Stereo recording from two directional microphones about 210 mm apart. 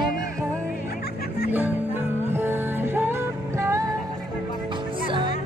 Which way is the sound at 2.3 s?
10° right (ahead or behind).